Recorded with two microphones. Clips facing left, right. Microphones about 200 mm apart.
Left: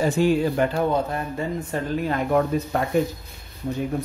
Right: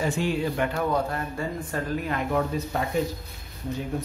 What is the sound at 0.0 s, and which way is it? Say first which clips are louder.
Speech: left 6 dB; 40° left (ahead or behind).